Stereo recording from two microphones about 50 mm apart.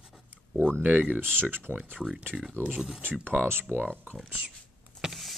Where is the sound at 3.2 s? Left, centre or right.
Right.